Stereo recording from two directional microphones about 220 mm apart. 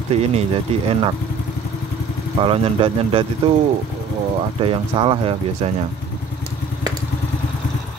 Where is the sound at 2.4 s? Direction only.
25° right (ahead or behind).